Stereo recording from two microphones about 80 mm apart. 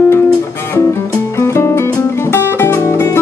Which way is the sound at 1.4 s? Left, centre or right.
Left.